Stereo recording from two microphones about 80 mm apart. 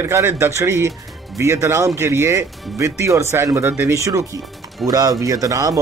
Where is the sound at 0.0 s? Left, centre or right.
Right.